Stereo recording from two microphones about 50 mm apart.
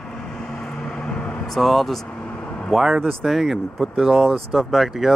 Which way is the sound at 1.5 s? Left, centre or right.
Centre.